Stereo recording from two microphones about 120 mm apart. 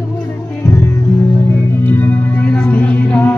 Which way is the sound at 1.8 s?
15° left (ahead or behind).